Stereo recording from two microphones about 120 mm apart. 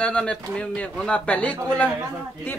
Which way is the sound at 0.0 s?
10° left (ahead or behind).